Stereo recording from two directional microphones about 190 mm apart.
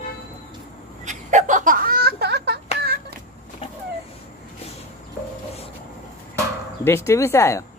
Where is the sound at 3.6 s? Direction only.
30° left (ahead or behind).